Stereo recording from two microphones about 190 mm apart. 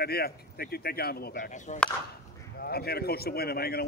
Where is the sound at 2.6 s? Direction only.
55° left (ahead or behind).